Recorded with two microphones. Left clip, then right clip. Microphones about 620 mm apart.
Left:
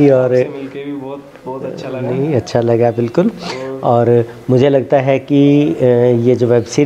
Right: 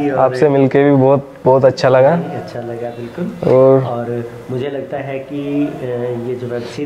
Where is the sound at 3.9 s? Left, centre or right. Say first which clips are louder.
Left 10 dB; left.